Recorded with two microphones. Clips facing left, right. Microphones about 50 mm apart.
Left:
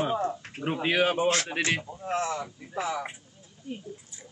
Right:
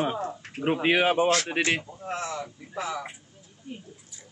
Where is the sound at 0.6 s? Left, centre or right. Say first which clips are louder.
Right 3 dB; centre.